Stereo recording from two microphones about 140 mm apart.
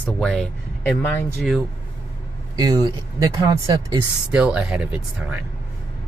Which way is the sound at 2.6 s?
25° right (ahead or behind).